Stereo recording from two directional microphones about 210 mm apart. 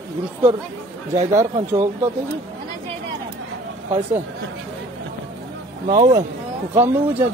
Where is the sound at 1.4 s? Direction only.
15° right (ahead or behind).